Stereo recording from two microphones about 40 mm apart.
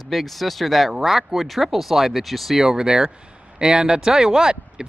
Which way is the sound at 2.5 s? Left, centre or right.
Centre.